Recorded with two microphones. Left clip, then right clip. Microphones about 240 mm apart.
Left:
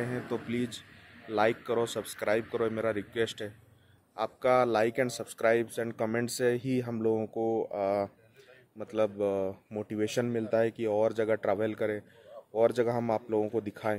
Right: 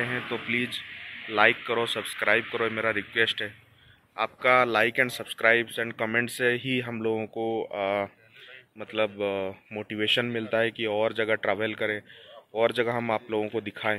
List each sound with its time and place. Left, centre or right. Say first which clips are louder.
0.2 s speech: right 6 dB; centre